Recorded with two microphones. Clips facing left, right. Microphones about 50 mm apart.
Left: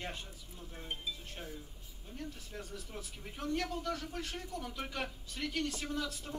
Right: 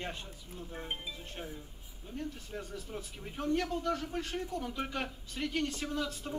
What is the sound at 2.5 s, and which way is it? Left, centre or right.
Speech, centre.